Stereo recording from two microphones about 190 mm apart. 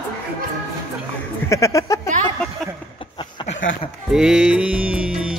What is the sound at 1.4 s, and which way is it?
Speech, 15° left (ahead or behind).